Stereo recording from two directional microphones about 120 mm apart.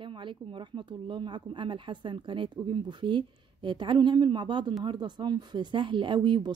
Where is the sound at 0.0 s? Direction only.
45° right (ahead or behind).